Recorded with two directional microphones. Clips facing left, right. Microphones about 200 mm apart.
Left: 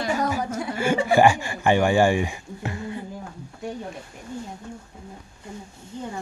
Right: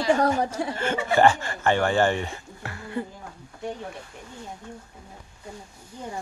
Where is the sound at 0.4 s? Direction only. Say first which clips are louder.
Right 1 dB; 30° right (ahead or behind).